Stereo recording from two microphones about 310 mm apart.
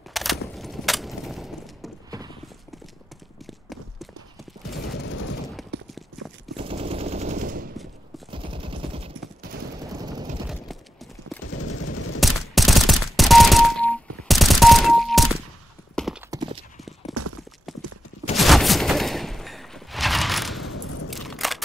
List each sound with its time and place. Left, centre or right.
0.1 s a sound: centre
2.0 s clip-clop: centre
4.8 s a sound: left
5.7 s clip-clop: right
6.6 s machine gun: centre
8.3 s machine gun: centre
11.4 s machine gun: left
12.5 s machine gun: centre
15.9 s clip-clop: centre
16.3 s clip-clop: centre
17.1 s clip-clop: right
18.3 s fusillade: centre
20.7 s a sound: left
21.1 s single-lens reflex camera: centre